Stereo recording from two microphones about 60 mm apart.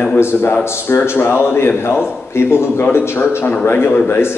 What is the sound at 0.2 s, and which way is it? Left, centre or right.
A man's voice, left.